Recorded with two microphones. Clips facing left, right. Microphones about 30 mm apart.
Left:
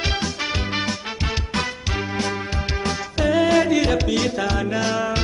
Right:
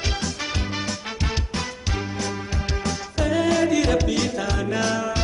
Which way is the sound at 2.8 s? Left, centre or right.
Left.